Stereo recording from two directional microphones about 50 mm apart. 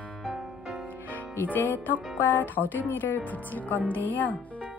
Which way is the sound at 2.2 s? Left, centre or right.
Left.